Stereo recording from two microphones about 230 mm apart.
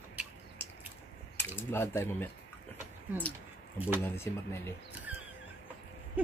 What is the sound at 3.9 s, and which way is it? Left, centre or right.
Speech, centre.